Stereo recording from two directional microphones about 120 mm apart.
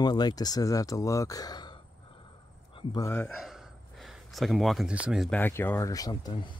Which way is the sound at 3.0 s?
20° left (ahead or behind).